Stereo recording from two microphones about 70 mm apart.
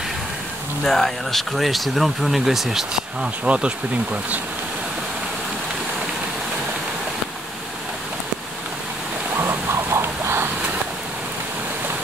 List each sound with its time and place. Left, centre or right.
0.8 s speech: centre
3.4 s bee: centre
9.4 s a sound: right